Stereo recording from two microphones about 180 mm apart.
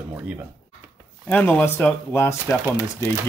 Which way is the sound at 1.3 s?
10° left (ahead or behind).